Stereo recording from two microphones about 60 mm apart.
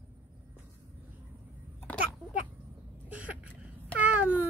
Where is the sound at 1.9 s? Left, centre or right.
Left.